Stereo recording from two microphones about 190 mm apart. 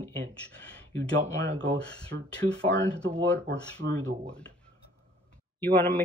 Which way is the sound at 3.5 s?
70° right (ahead or behind).